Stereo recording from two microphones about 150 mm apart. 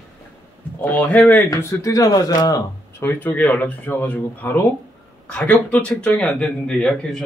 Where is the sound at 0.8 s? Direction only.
10° left (ahead or behind).